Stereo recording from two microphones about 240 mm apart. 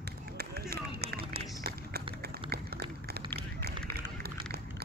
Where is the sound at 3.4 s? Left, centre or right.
Right.